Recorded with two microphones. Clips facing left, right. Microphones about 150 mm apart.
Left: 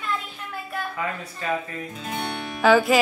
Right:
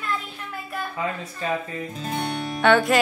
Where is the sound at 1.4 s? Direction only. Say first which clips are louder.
Right 1 dB; 30° right (ahead or behind).